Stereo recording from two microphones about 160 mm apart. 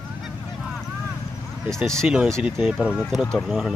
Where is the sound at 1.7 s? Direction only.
5° left (ahead or behind).